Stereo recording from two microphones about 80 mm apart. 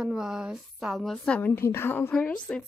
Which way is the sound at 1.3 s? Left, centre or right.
Left.